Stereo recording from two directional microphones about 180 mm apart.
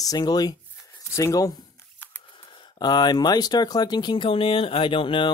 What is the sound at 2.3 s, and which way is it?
Speech, 25° left (ahead or behind).